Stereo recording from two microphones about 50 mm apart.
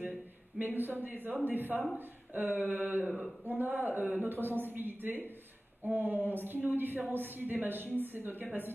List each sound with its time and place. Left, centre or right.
0.6 s a woman's voice: right